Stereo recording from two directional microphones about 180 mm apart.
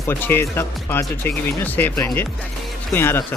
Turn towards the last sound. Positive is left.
turn(degrees=10)  # may be behind; listen again after turning